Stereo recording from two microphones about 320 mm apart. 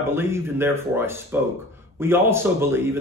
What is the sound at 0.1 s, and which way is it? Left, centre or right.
Speech, centre.